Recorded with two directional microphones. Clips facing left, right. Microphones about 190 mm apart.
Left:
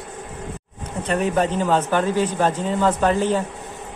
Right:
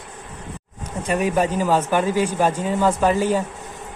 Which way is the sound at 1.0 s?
10° right (ahead or behind).